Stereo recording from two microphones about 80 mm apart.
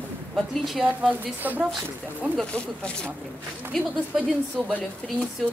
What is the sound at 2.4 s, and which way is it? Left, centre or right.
Speech, centre.